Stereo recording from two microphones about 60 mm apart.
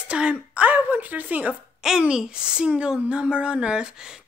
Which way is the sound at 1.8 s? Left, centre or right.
Centre.